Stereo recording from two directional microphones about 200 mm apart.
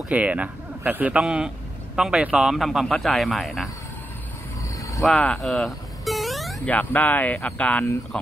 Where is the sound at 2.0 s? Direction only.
5° right (ahead or behind).